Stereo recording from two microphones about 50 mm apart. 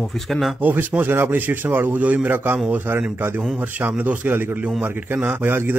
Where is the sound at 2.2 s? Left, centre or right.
Right.